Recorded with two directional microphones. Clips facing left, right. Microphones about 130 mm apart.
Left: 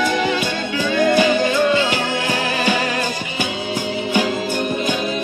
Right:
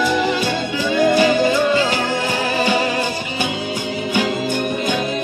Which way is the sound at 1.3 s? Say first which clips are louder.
Right 1 dB; 40° right (ahead or behind).